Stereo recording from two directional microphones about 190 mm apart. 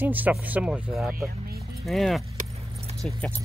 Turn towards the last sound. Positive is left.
turn(degrees=5)  # may be behind; listen again after turning